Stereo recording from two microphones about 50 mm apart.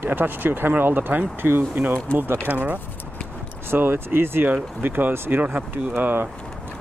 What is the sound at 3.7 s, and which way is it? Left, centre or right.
Speech, right.